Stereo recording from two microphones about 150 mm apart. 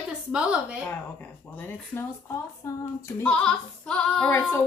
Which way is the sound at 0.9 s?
10° left (ahead or behind).